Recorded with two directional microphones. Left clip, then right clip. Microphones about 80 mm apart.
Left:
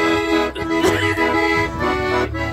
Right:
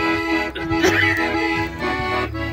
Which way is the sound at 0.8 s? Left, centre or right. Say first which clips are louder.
Right 1 dB; centre.